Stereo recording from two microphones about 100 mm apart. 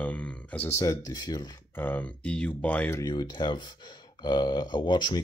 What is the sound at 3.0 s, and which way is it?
Speech, 45° left (ahead or behind).